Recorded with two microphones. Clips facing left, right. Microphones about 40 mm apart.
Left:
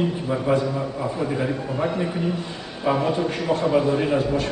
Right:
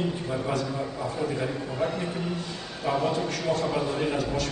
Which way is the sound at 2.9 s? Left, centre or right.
Left.